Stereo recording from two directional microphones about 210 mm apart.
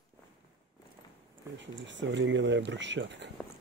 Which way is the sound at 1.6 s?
60° right (ahead or behind).